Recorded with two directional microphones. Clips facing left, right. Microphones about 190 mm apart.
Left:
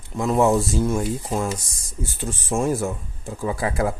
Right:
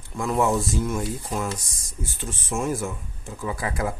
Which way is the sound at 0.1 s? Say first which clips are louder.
Left 4 dB; 25° left (ahead or behind).